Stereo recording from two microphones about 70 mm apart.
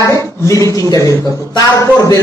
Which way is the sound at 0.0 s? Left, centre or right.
Left.